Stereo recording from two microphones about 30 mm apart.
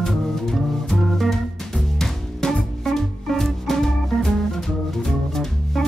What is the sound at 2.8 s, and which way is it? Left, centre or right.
Music, centre.